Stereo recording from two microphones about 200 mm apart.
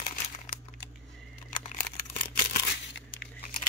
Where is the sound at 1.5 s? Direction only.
40° left (ahead or behind).